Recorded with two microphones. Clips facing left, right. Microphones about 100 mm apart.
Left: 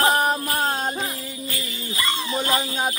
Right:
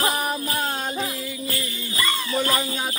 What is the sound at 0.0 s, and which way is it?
Jingle bell, 40° left (ahead or behind).